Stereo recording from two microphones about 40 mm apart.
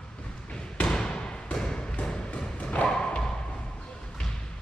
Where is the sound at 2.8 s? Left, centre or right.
Left.